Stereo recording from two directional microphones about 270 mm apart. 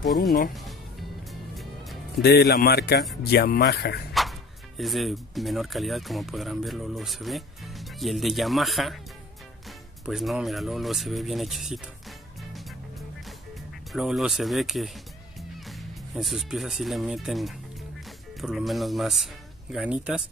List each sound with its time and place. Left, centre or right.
1.3 s music: centre
2.2 s speech: left
4.1 s speech: centre
12.4 s music: centre
13.9 s speech: centre